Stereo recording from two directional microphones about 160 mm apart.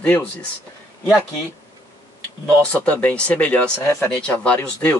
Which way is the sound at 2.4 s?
10° left (ahead or behind).